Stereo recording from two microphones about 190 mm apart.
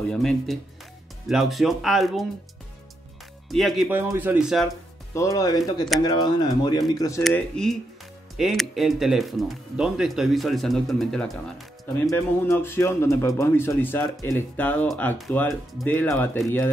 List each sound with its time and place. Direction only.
0.1 s speech: 5° left (ahead or behind)
3.4 s speech: centre (ahead or behind)
5.1 s speech: 15° left (ahead or behind)
7.2 s speech: 5° left (ahead or behind)
12.1 s a man's voice: 10° left (ahead or behind)